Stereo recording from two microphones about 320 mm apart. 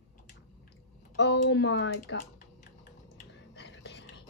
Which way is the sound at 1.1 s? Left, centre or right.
Left.